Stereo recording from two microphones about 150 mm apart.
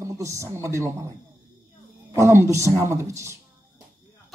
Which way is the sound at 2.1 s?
20° right (ahead or behind).